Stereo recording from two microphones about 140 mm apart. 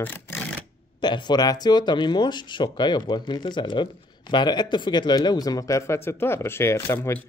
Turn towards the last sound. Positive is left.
turn(degrees=15)  # may be behind; listen again after turning